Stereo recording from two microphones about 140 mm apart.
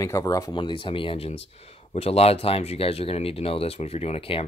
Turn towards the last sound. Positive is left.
turn(degrees=40)  # may be behind; listen again after turning